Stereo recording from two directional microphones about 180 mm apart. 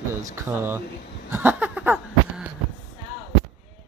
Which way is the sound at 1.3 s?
10° right (ahead or behind).